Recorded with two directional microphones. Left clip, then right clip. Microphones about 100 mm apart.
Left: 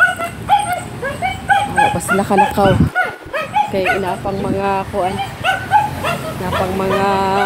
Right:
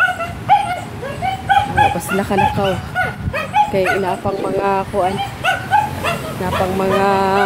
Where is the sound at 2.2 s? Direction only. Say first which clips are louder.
Left 4 dB; 20° left (ahead or behind).